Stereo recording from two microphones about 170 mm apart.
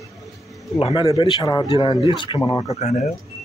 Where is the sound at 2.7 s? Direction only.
40° left (ahead or behind).